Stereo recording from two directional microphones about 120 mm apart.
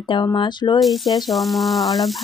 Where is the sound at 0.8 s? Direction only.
Centre (ahead or behind).